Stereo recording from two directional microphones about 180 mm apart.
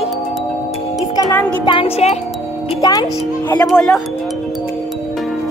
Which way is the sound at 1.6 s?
30° left (ahead or behind).